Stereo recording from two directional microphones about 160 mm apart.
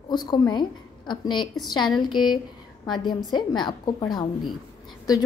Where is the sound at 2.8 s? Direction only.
25° left (ahead or behind).